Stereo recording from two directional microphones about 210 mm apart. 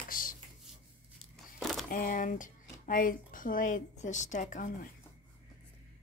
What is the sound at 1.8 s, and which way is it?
Speech, 40° left (ahead or behind).